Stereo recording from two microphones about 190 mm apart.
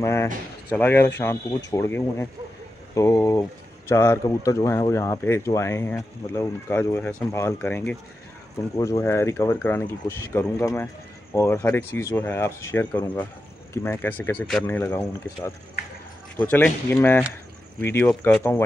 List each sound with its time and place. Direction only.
0.0 s speech: 15° left (ahead or behind)